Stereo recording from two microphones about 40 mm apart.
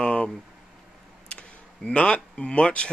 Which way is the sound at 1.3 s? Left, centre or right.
Left.